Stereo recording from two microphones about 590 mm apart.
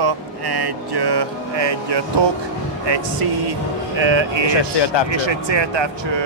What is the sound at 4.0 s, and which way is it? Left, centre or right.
Speech, right.